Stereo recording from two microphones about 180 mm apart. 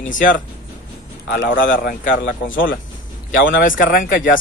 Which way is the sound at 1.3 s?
75° left (ahead or behind).